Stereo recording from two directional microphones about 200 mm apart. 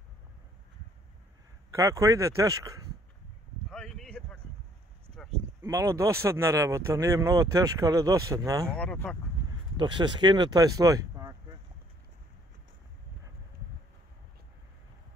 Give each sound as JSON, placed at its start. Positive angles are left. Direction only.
{"t": 1.7, "sound": "speech", "side_deg": -15}
{"t": 3.7, "sound": "a sound", "side_deg": 0}
{"t": 5.6, "sound": "speech", "side_deg": -15}
{"t": 8.7, "sound": "speech", "side_deg": 5}
{"t": 9.5, "sound": "speech", "side_deg": -25}